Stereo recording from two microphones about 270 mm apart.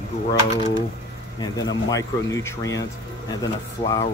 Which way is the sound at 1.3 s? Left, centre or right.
Centre.